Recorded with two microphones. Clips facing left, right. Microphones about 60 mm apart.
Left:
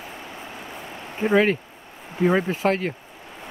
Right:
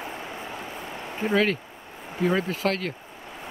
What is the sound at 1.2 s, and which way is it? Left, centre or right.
Speech, centre.